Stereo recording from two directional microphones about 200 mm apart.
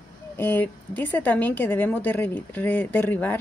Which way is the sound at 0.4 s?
10° left (ahead or behind).